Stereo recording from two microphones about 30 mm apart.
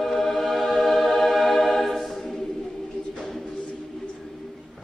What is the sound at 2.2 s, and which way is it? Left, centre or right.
Choir, centre.